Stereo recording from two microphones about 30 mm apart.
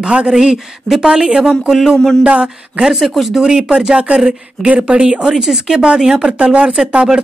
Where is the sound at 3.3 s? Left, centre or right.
Centre.